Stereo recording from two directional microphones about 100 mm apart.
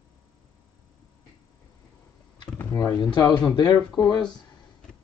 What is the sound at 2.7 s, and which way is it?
Speech, 35° left (ahead or behind).